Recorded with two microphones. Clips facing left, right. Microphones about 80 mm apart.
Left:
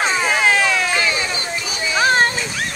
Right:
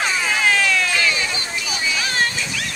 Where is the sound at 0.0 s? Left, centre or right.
Left.